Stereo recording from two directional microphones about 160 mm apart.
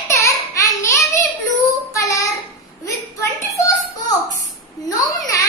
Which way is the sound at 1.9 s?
20° left (ahead or behind).